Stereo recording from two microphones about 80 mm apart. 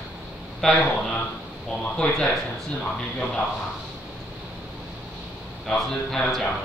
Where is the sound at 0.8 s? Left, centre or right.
Centre.